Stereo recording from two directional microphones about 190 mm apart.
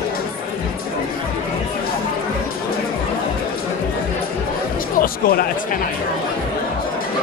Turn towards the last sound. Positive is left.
turn(degrees=50)  # may be behind; listen again after turning